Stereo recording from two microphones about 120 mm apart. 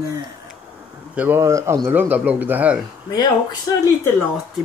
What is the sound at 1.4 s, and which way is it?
Speech, 25° right (ahead or behind).